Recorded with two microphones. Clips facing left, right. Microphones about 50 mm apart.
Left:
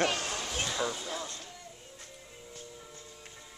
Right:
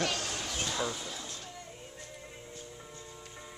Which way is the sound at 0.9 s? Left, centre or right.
Left.